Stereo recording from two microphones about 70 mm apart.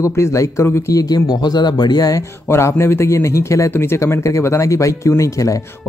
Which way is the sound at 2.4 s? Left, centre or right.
Left.